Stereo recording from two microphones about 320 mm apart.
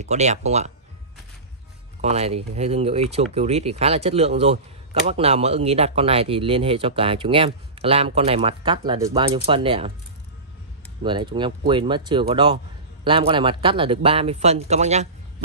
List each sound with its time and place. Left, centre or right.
0.0 s speech: right
2.0 s speech: centre
11.0 s speech: centre